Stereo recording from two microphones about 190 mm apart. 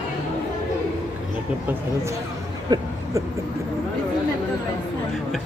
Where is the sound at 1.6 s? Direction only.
15° right (ahead or behind).